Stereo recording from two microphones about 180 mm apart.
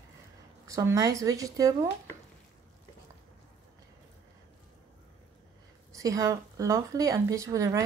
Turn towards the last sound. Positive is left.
turn(degrees=-15)  # may be behind; listen again after turning